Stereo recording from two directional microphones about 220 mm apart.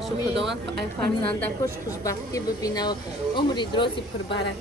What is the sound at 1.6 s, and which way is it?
Speech, 15° left (ahead or behind).